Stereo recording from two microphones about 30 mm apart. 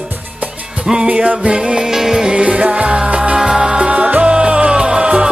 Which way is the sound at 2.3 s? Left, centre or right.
Right.